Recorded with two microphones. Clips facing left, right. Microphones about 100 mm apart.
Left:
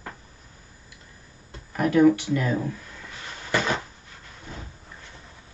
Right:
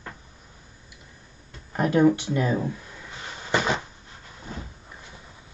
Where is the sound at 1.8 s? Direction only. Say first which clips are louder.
Left 1 dB; 25° right (ahead or behind).